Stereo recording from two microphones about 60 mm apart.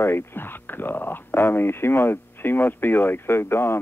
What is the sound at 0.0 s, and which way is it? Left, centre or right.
Speech, left.